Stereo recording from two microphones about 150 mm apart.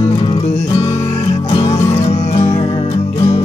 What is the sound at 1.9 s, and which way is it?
Music, 45° left (ahead or behind).